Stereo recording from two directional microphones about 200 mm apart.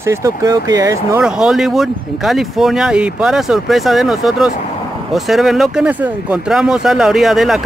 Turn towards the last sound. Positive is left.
turn(degrees=0)  # may be behind; listen again after turning